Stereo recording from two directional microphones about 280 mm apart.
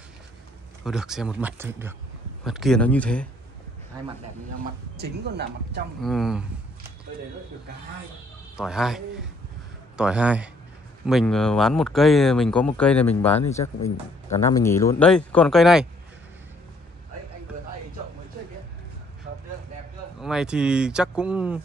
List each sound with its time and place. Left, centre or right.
0.8 s speech: centre
4.9 s speech: right
6.0 s speech: centre
8.5 s speech: centre
14.4 s speech: centre
20.2 s speech: centre